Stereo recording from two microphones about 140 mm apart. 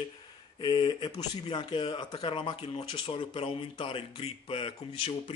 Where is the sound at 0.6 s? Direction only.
30° left (ahead or behind).